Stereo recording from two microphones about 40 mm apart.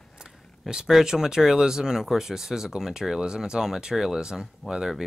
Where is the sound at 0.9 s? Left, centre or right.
Centre.